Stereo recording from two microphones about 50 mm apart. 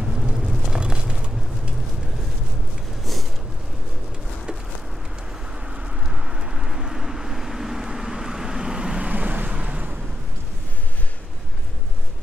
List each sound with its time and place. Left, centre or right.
0.0 s vehicle: centre
5.7 s vehicle: centre
9.1 s vehicle: right